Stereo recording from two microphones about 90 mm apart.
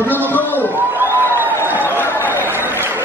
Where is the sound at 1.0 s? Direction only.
25° left (ahead or behind).